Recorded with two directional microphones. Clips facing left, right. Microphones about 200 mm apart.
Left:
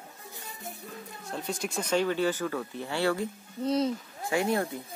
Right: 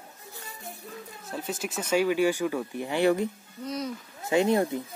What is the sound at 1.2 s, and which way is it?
Speech, 5° right (ahead or behind).